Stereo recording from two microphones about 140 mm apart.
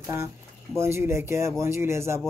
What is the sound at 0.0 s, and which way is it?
Speech, 20° right (ahead or behind).